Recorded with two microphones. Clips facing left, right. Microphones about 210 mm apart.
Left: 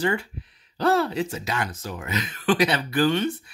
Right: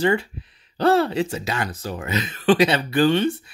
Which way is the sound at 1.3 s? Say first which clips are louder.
Right 2 dB; 30° right (ahead or behind).